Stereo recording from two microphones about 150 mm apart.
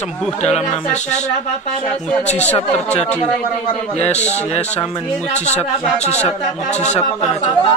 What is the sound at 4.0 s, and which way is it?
Speech, 50° left (ahead or behind).